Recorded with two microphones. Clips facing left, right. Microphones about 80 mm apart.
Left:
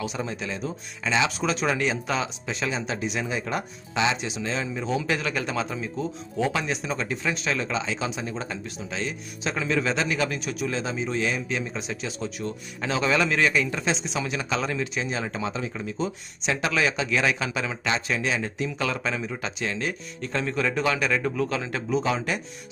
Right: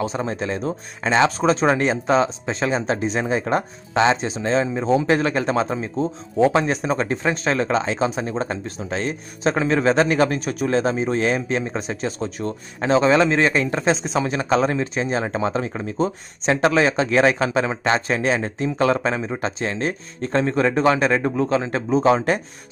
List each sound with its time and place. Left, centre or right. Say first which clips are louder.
0.0 s speech: right 6 dB; right